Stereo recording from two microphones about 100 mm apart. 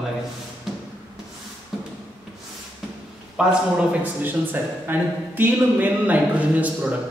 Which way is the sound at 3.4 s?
10° right (ahead or behind).